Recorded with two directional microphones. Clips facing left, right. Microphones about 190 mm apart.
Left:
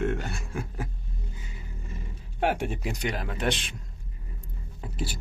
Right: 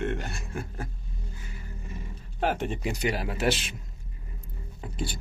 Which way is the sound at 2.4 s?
10° left (ahead or behind).